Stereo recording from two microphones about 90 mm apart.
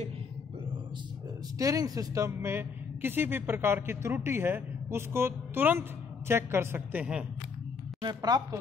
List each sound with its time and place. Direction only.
1.6 s a woman's voice: 40° right (ahead or behind); by 7.2 s 15° right (ahead or behind)
8.0 s a woman's voice: 55° right (ahead or behind)